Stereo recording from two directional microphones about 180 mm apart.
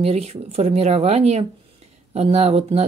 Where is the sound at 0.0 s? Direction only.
35° right (ahead or behind).